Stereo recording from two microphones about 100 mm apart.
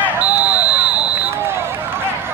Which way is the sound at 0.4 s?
15° right (ahead or behind).